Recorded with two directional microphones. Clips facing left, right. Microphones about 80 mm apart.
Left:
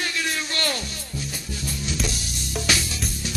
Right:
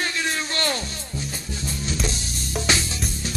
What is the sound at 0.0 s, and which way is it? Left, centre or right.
Music, right.